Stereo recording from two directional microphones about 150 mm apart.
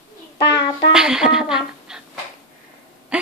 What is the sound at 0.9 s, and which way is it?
Speech, 5° right (ahead or behind).